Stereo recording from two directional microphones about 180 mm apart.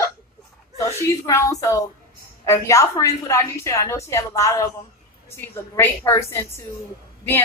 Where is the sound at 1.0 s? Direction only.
15° left (ahead or behind).